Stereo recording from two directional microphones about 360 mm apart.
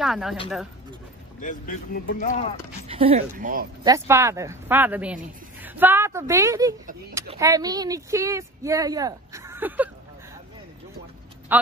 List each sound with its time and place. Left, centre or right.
0.0 s speech: centre
1.4 s speech: left
2.9 s speech: centre
3.8 s speech: centre